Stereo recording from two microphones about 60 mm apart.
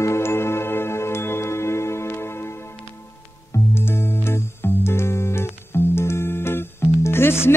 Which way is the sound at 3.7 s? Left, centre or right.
Left.